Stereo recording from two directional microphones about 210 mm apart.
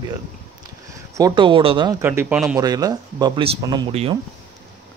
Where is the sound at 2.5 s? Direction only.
15° right (ahead or behind).